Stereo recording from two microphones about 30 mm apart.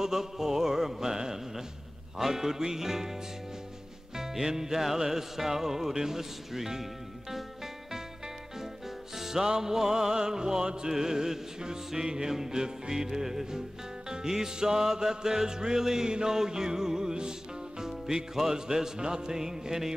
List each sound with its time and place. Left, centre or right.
0.0 s music: centre
4.2 s music: centre